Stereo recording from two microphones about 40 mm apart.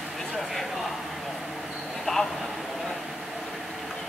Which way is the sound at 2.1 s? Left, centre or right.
Centre.